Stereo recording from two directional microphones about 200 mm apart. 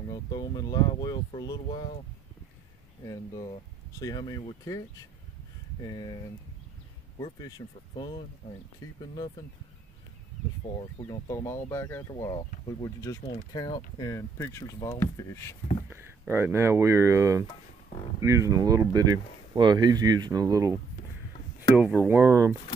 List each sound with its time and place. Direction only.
0.1 s speech: 20° left (ahead or behind)
4.0 s speech: 20° left (ahead or behind)
5.9 s speech: 20° left (ahead or behind)
7.2 s speech: 20° left (ahead or behind)
11.1 s speech: 15° left (ahead or behind)
15.9 s speech: 10° right (ahead or behind)
21.7 s speech: 5° right (ahead or behind)